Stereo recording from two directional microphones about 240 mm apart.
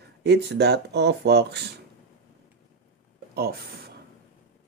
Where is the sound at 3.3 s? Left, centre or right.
Right.